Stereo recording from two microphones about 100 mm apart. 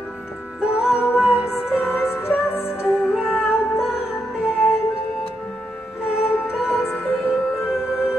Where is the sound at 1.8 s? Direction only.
20° left (ahead or behind).